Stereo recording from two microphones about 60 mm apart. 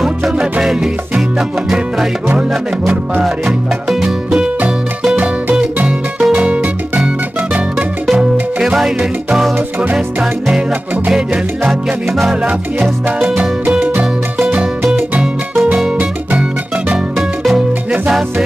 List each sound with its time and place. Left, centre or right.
0.2 s music: centre
3.4 s music: centre
5.1 s music: centre
5.9 s music: centre
8.2 s music: centre
11.1 s music: centre